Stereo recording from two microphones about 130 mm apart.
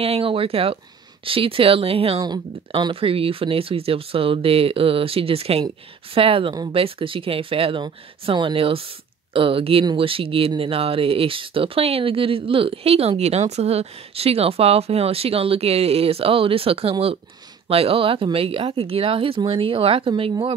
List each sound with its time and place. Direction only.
0.0 s speech: 45° right (ahead or behind)
2.1 s speech: 35° right (ahead or behind)